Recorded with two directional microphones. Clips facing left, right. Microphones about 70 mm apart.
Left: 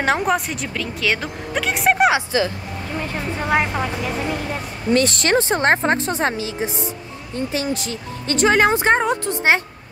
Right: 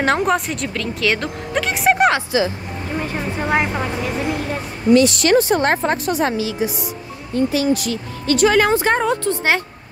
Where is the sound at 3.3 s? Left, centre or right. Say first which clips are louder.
Even; centre.